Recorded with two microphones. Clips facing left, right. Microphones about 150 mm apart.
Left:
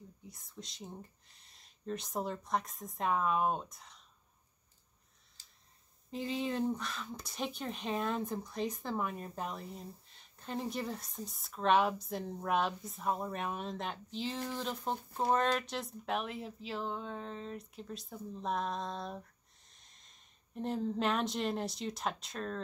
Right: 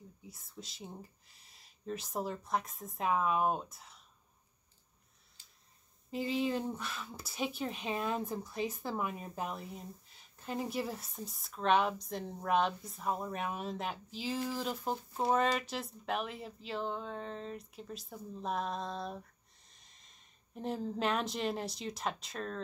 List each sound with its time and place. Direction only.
0.3 s speech: 5° right (ahead or behind)
5.4 s a sound: 40° left (ahead or behind)
6.0 s speech: centre (ahead or behind)